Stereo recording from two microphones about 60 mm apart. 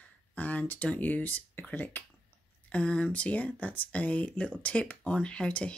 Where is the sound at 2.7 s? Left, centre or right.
Centre.